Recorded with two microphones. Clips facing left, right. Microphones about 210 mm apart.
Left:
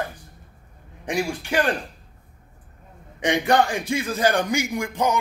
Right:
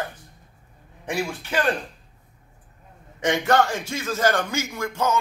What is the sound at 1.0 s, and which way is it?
Speech, 15° left (ahead or behind).